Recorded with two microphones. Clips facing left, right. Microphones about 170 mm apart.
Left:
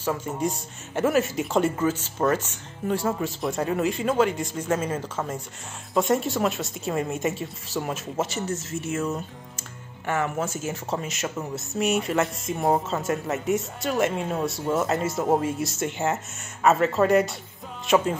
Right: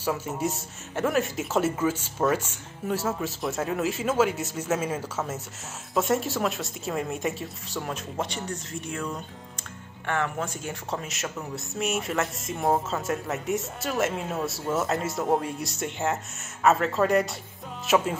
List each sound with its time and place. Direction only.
0.0 s speech: 10° right (ahead or behind)